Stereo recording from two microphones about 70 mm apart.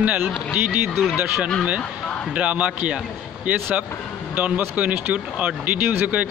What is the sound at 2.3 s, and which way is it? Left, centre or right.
Speech, centre.